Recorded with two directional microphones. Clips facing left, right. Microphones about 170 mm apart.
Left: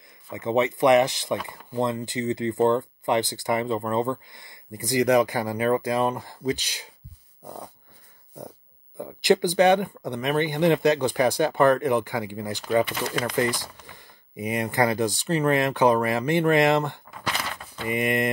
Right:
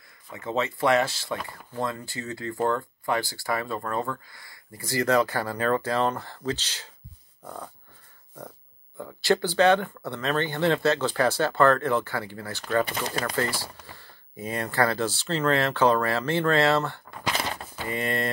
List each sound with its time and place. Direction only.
0.3 s speech: 20° left (ahead or behind)
8.4 s speech: 20° left (ahead or behind)
17.4 s a sound: 35° right (ahead or behind)
17.8 s speech: 15° left (ahead or behind)